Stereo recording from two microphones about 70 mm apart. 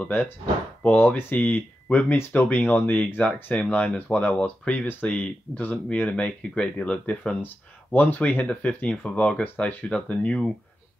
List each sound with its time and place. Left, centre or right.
0.0 s speech: left
7.4 s speech: left